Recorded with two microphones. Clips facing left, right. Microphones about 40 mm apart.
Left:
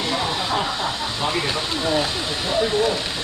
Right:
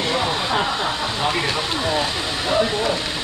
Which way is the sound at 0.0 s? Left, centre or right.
Centre.